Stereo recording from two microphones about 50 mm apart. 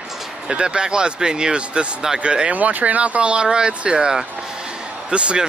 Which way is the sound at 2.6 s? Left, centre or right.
Right.